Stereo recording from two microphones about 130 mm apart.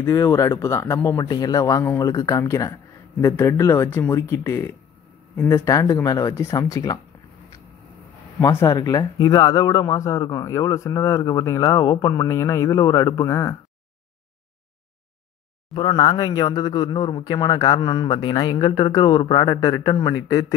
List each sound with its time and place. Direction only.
0.0 s speech: 25° left (ahead or behind)
5.7 s speech: 25° left (ahead or behind)
8.4 s speech: 25° left (ahead or behind)
15.7 s speech: 40° left (ahead or behind)